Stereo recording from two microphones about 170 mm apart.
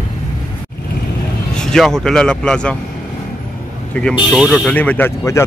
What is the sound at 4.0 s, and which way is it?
Speech, 5° left (ahead or behind).